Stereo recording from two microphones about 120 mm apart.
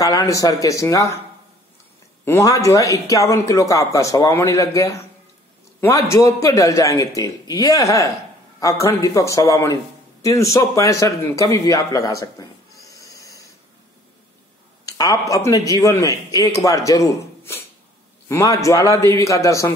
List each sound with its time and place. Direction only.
0.0 s speech: 30° left (ahead or behind)
2.2 s a man's voice: 25° left (ahead or behind)
14.9 s speech: 30° left (ahead or behind)